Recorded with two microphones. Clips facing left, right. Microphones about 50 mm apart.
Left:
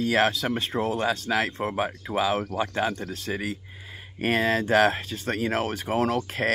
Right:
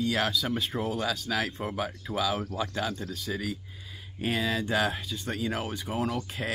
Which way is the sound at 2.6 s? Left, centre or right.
Left.